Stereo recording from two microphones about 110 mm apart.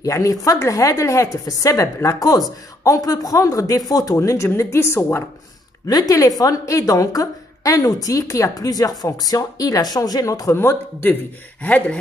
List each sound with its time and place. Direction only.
0.0 s a woman's voice: 30° left (ahead or behind)
5.9 s a woman's voice: 35° left (ahead or behind); by 12.0 s 15° left (ahead or behind)